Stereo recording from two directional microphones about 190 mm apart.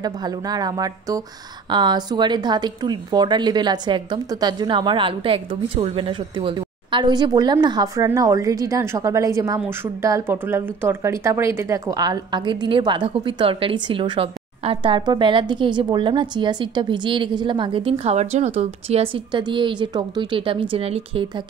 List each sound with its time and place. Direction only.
0.0 s speech: 20° right (ahead or behind)